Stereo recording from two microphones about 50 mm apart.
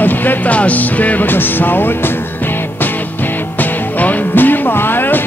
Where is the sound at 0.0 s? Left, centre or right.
Left.